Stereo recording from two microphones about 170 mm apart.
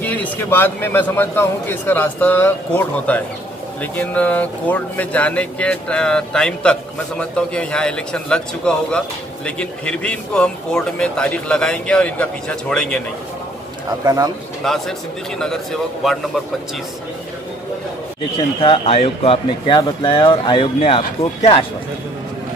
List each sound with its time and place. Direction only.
0.0 s a man's voice: 10° left (ahead or behind)
14.0 s speech: 20° right (ahead or behind)
14.6 s a man's voice: 5° left (ahead or behind)
18.6 s speech: 35° left (ahead or behind)